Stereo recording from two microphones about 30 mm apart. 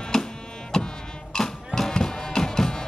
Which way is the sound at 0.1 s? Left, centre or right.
Centre.